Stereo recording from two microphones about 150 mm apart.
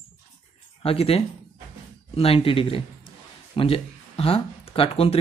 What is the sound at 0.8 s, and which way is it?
Speech, 40° left (ahead or behind).